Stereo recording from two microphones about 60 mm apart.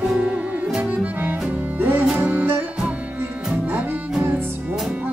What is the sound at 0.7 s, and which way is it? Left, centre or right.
Music, right.